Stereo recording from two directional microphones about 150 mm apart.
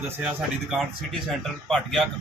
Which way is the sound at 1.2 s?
Centre (ahead or behind).